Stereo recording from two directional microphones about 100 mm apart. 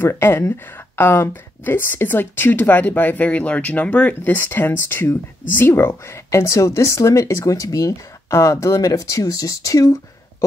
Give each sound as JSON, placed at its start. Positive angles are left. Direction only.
{"t": 0.0, "sound": "speech", "side_deg": 25}